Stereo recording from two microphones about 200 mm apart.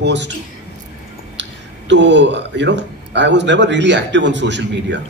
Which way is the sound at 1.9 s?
60° right (ahead or behind).